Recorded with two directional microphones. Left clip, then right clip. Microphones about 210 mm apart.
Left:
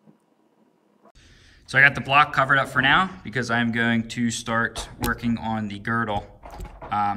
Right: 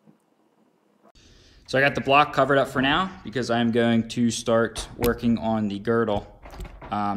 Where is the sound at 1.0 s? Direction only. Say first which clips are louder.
Left 1 dB; 5° right (ahead or behind).